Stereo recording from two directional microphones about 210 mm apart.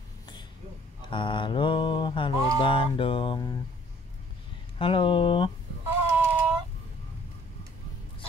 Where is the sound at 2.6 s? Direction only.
25° left (ahead or behind).